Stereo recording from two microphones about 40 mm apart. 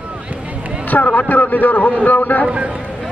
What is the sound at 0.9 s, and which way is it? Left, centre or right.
A man's voice, left.